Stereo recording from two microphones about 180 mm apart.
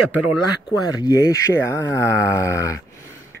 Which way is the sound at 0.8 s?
20° left (ahead or behind).